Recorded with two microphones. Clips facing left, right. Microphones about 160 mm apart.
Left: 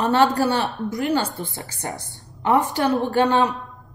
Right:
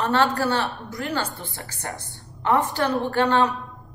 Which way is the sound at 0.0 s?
15° left (ahead or behind).